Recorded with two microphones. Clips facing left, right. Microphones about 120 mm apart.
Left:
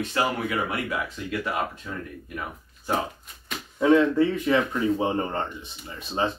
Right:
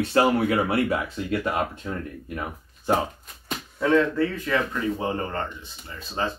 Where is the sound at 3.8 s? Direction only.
20° left (ahead or behind).